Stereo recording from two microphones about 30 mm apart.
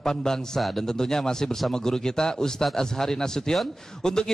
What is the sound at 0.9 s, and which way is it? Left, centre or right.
A man's voice, centre.